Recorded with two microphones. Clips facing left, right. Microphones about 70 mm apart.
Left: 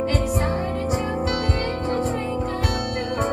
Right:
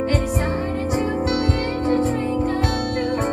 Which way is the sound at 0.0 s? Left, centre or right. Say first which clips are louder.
Right 1 dB; right.